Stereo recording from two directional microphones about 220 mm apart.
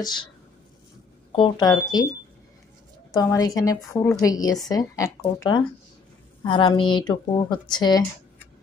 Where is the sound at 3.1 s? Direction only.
15° left (ahead or behind).